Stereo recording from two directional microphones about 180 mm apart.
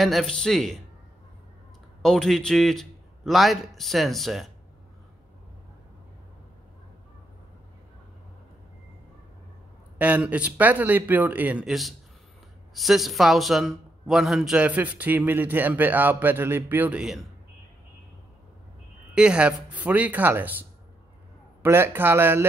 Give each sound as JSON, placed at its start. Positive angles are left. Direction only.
{"t": 0.0, "sound": "a man's voice", "side_deg": 0}
{"t": 2.0, "sound": "a man's voice", "side_deg": 0}
{"t": 9.9, "sound": "a man's voice", "side_deg": -10}
{"t": 19.1, "sound": "a man's voice", "side_deg": -5}
{"t": 21.6, "sound": "a man's voice", "side_deg": -10}